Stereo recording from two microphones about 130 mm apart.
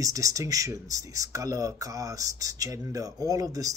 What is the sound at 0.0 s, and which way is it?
Speech, 25° right (ahead or behind).